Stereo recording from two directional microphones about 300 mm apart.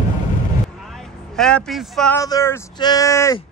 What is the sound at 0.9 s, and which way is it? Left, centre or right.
A man's voice, centre.